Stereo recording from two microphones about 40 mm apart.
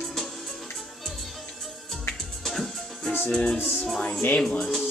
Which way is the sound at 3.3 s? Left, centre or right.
Centre.